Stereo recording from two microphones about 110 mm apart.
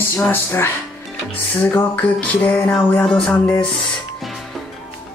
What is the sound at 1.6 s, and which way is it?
Music, 20° left (ahead or behind).